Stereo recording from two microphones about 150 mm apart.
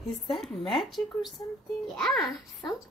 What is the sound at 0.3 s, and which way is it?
Speech, centre (ahead or behind).